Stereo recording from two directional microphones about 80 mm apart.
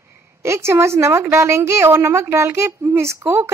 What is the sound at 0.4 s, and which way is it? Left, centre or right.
A woman's voice, right.